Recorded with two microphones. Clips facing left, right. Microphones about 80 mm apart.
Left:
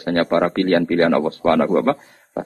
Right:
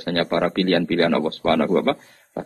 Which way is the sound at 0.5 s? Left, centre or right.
Left.